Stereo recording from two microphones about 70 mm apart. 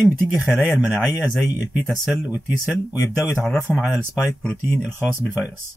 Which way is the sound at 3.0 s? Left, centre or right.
Left.